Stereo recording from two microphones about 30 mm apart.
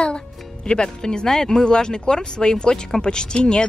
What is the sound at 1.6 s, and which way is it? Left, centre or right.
Speech, left.